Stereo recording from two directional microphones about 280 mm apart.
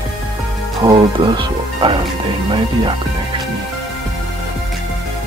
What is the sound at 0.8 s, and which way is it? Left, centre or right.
Speech, centre.